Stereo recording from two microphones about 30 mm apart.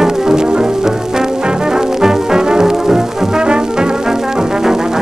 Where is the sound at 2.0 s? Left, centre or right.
Centre.